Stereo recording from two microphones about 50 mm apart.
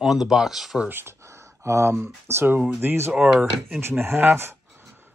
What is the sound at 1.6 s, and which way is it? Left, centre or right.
Speech, right.